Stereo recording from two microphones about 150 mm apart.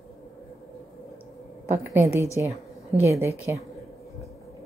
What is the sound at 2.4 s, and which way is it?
A woman's voice, 15° right (ahead or behind).